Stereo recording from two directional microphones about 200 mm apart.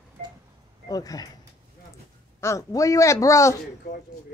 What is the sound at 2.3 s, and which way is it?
Speech, 15° left (ahead or behind).